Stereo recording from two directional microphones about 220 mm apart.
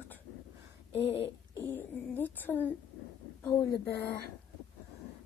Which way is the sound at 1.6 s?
10° left (ahead or behind).